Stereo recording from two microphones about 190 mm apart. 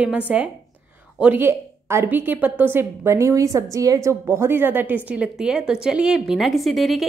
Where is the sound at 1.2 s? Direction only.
10° right (ahead or behind).